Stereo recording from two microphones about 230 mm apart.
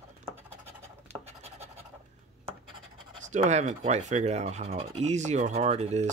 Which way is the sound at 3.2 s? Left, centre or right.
Right.